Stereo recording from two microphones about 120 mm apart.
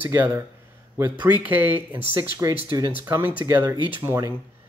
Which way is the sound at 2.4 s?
25° right (ahead or behind).